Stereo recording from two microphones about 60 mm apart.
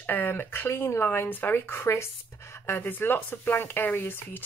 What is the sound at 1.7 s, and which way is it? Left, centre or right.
Speech, left.